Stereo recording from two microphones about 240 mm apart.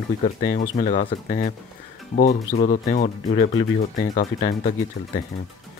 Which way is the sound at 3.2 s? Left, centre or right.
Centre.